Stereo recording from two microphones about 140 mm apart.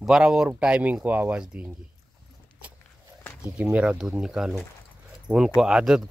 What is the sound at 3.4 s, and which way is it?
Speech, 10° right (ahead or behind).